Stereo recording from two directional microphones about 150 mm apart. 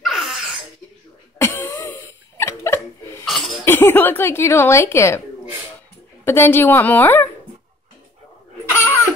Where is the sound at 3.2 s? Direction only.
Centre (ahead or behind).